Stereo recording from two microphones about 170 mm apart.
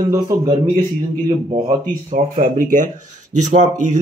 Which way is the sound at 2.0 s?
45° right (ahead or behind).